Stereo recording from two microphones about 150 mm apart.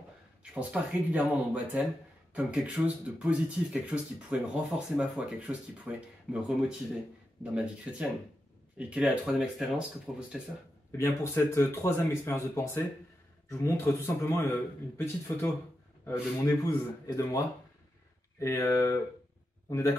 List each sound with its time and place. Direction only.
0.4 s speech: 10° right (ahead or behind)
7.5 s speech: 10° right (ahead or behind)
10.9 s a man's voice: 15° left (ahead or behind)
18.4 s speech: 20° left (ahead or behind)